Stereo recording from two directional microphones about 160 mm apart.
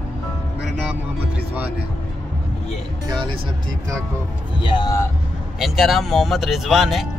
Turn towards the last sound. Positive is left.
turn(degrees=0)  # may be behind; listen again after turning